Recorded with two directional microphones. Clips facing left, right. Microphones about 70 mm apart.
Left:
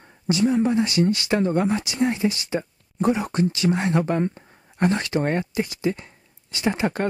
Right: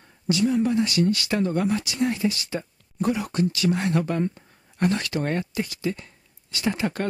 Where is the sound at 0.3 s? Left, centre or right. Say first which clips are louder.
Left 2 dB; left.